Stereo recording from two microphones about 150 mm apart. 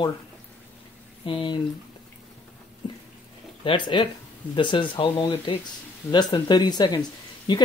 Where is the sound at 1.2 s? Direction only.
35° left (ahead or behind).